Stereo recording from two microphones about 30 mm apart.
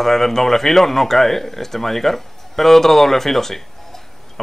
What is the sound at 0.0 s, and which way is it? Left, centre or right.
Speech, centre.